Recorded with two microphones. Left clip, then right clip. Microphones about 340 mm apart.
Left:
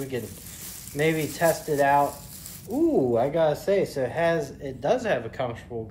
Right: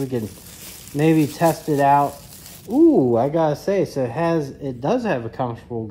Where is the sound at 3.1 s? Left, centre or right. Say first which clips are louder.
Right 4 dB; centre.